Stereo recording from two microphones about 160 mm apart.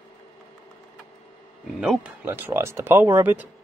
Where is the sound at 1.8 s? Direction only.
5° right (ahead or behind).